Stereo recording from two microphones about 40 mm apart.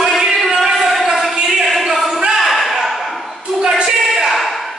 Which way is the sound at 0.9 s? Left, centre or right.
Centre.